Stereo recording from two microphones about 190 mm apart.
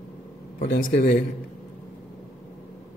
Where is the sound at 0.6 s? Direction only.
60° left (ahead or behind).